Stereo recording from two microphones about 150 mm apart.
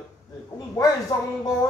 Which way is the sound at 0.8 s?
20° left (ahead or behind).